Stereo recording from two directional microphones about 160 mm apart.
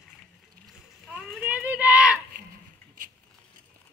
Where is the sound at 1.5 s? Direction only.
10° right (ahead or behind).